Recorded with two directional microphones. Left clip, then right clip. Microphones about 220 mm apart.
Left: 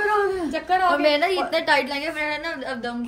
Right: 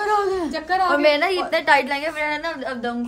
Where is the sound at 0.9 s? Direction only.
5° right (ahead or behind).